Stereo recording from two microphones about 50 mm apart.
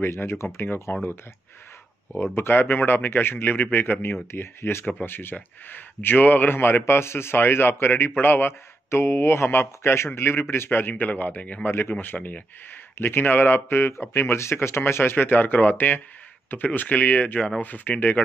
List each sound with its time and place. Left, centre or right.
0.0 s speech: left
2.3 s speech: left
3.5 s speech: left
4.3 s speech: left
5.0 s speech: left
10.7 s speech: left
11.6 s speech: left
14.1 s speech: left
15.2 s speech: left